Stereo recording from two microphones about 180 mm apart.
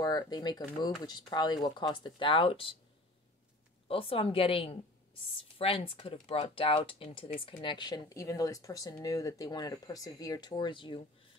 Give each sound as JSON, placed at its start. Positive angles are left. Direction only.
{"t": 0.0, "sound": "speech", "side_deg": 20}
{"t": 3.8, "sound": "a woman's voice", "side_deg": 30}